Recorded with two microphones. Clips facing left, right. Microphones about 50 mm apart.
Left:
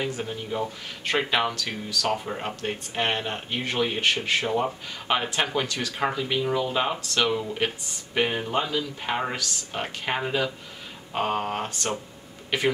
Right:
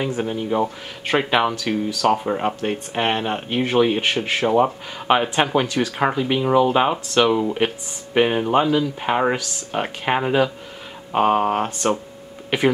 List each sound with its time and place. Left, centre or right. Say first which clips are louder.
0.0 s speech: right 7 dB; centre
1.6 s speech: right 8 dB; centre